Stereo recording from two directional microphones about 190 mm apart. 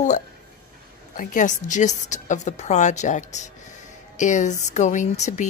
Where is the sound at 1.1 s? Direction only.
45° left (ahead or behind).